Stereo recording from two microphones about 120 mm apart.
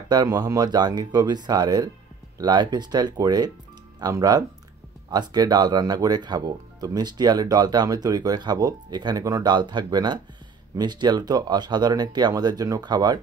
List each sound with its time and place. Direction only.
0.1 s speech: 35° right (ahead or behind)